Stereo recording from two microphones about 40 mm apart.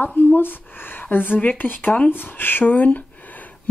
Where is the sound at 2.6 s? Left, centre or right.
Left.